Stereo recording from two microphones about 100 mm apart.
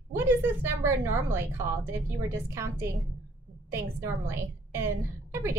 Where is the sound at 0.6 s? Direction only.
25° right (ahead or behind).